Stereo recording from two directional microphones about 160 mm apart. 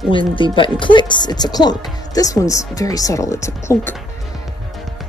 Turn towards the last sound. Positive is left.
turn(degrees=15)  # may be behind; listen again after turning